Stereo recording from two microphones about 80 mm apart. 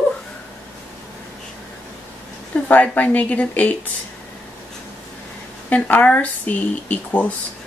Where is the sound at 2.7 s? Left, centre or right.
Centre.